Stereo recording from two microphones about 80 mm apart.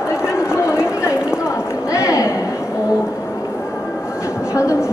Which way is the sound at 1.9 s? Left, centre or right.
Left.